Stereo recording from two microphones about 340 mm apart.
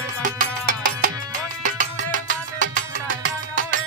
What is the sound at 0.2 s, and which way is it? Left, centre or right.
Music, right.